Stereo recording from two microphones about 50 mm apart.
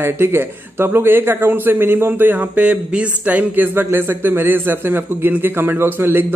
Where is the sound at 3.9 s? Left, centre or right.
Right.